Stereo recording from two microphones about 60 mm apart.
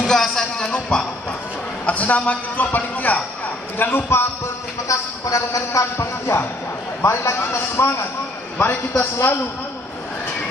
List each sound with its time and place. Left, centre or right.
0.0 s speech: centre
1.9 s a man's voice: left
4.8 s a man's voice: left
7.3 s a man's voice: left
8.9 s a man's voice: left